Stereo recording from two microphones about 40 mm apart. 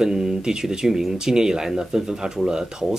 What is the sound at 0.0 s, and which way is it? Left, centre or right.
Speech, centre.